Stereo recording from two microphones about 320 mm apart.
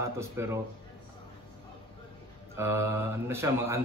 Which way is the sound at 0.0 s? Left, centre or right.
Centre.